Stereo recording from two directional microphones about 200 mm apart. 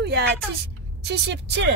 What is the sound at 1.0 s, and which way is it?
Speech, 60° right (ahead or behind).